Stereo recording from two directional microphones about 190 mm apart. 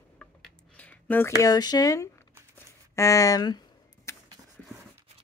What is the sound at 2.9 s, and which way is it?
Speech, 15° left (ahead or behind).